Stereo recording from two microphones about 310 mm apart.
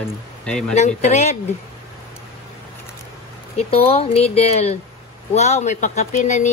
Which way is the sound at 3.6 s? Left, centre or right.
Centre.